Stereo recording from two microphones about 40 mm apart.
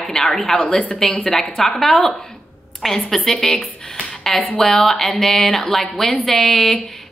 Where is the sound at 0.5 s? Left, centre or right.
Left.